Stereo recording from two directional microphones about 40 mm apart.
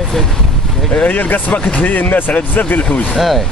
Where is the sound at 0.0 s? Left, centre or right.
Centre.